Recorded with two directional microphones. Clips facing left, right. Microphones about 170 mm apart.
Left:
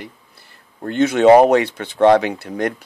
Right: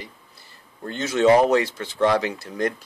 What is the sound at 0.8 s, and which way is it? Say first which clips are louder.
Speech: left 6 dB; 60° left (ahead or behind).